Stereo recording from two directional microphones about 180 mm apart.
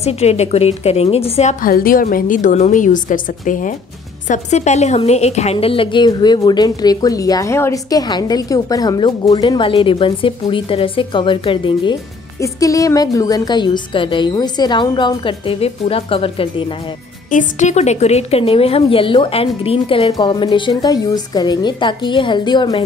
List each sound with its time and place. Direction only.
0.0 s a woman's voice: 35° left (ahead or behind)
17.3 s a woman's voice: 45° left (ahead or behind); by 22.8 s 25° left (ahead or behind)